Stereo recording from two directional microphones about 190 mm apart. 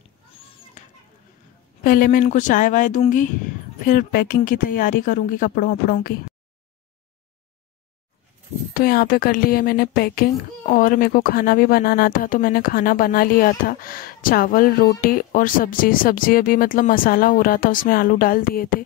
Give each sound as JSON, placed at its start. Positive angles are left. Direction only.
{"t": 1.8, "sound": "speech", "side_deg": 50}
{"t": 8.7, "sound": "speech", "side_deg": 50}